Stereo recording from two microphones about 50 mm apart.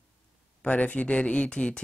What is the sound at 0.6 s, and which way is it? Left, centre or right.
Speech, left.